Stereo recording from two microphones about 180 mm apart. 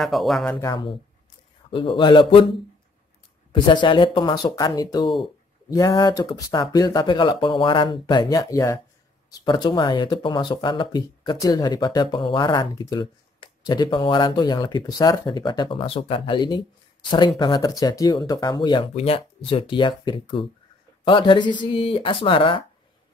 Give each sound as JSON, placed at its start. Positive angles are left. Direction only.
{"t": 0.0, "sound": "speech", "side_deg": 0}
{"t": 0.6, "sound": "speech", "side_deg": 25}
{"t": 3.5, "sound": "speech", "side_deg": 25}